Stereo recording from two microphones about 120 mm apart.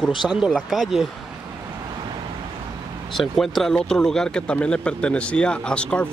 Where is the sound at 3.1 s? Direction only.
Centre (ahead or behind).